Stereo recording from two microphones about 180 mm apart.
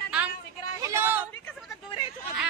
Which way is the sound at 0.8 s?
15° right (ahead or behind).